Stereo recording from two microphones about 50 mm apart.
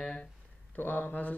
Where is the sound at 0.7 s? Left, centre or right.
Left.